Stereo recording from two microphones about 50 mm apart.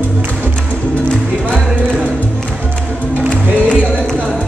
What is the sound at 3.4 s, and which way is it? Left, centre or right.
Music, right.